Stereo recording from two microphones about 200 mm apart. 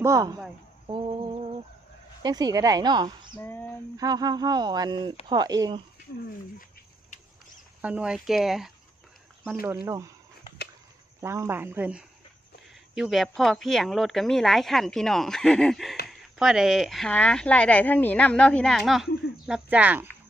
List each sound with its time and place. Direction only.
0.0 s speech: 15° right (ahead or behind)
3.3 s a sound: 10° left (ahead or behind)
4.0 s speech: 20° right (ahead or behind)
7.8 s speech: 5° right (ahead or behind)
9.5 s speech: 10° right (ahead or behind)
11.1 s speech: 15° right (ahead or behind)